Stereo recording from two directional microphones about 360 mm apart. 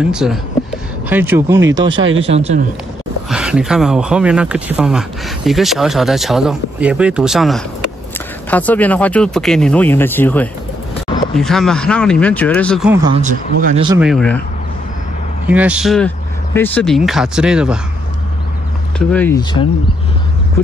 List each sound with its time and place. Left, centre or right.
0.0 s speech: centre
3.3 s speech: centre
13.2 s speech: right
13.9 s speech: centre
15.4 s speech: centre
18.9 s speech: centre